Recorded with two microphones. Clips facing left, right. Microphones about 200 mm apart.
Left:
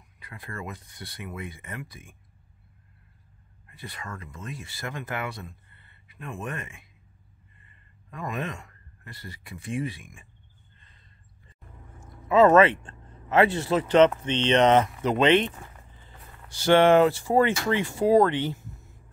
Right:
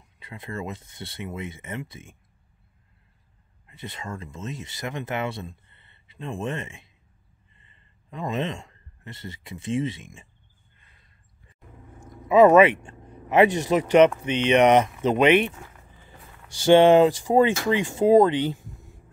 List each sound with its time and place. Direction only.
0.2 s speech: 25° right (ahead or behind)
3.6 s speech: 20° right (ahead or behind)
10.8 s a sound: 10° right (ahead or behind)
12.3 s speech: 15° right (ahead or behind)